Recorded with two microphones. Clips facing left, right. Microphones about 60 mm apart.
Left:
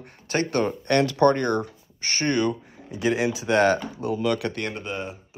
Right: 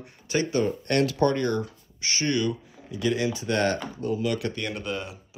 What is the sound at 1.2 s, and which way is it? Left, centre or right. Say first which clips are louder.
Speech: left 4 dB; left.